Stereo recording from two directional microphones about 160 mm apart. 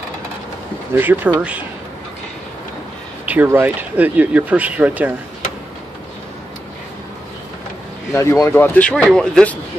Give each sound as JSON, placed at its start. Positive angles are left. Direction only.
{"t": 0.9, "sound": "speech", "side_deg": -10}
{"t": 3.3, "sound": "speech", "side_deg": -10}
{"t": 8.1, "sound": "speech", "side_deg": 15}